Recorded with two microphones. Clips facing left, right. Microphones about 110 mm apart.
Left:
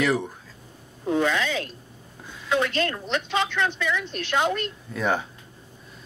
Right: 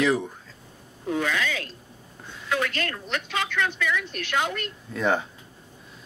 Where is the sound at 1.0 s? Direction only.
30° left (ahead or behind).